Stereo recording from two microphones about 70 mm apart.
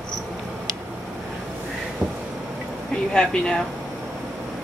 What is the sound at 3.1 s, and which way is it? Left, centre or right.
Speech, centre.